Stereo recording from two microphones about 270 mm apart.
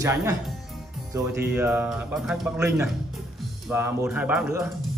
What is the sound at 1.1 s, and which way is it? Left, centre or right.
A man's voice, centre.